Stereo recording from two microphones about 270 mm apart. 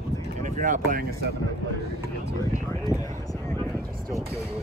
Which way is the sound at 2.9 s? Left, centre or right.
Centre.